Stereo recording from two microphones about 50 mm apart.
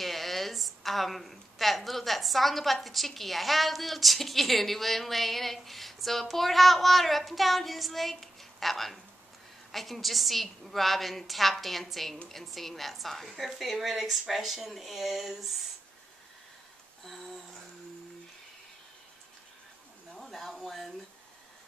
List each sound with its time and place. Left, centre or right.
0.0 s a woman's voice: centre
17.0 s a woman's voice: centre
20.2 s a sound: centre